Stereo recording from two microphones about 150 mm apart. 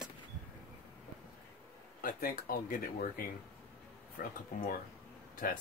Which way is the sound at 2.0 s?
70° left (ahead or behind).